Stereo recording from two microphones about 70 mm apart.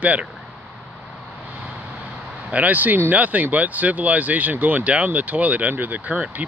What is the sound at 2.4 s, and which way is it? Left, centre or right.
Speech, right.